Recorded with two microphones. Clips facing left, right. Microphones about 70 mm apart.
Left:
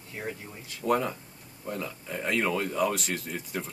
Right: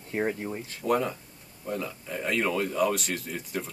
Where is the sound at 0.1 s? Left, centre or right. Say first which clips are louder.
Right 8 dB; right.